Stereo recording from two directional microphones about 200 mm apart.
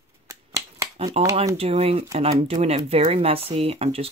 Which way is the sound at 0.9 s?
30° right (ahead or behind).